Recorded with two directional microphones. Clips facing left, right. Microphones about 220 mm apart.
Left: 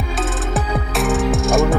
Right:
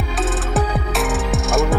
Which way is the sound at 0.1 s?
Centre (ahead or behind).